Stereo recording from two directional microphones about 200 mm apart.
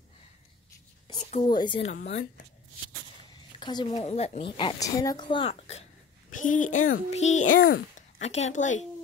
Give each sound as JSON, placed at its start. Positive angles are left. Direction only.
{"t": 1.4, "sound": "a woman's voice", "side_deg": 20}
{"t": 2.0, "sound": "speech", "side_deg": 40}
{"t": 3.5, "sound": "a woman's voice", "side_deg": 20}